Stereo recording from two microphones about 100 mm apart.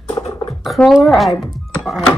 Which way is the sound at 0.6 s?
Centre (ahead or behind).